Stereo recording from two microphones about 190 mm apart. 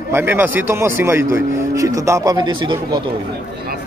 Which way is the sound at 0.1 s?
10° right (ahead or behind).